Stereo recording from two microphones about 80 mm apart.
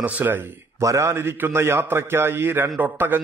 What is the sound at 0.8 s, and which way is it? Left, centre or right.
A man's voice, right.